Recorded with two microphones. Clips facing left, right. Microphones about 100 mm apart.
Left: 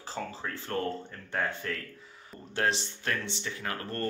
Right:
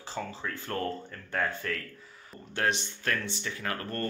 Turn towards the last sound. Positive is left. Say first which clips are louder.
# right 1 dB
turn(degrees=25)  # may be behind; listen again after turning